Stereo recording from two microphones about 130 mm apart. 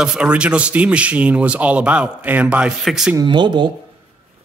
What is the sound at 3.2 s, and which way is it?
Speech, 35° right (ahead or behind).